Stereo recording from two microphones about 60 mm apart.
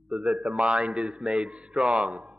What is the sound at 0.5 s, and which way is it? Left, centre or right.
A man's voice, centre.